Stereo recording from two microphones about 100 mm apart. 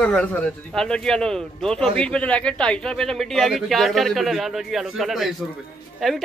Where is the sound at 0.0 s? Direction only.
15° left (ahead or behind).